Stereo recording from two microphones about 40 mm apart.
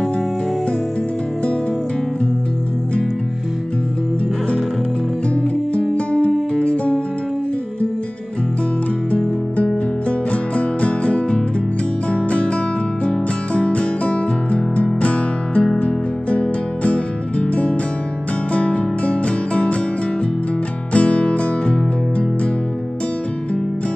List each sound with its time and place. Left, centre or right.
5.3 s music: left
10.3 s music: left
20.9 s music: left